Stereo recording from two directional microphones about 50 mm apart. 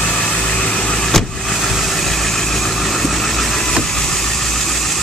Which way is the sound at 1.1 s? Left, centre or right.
Centre.